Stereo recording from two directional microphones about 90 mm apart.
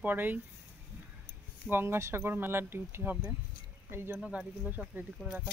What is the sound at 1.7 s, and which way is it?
Speech, 25° right (ahead or behind).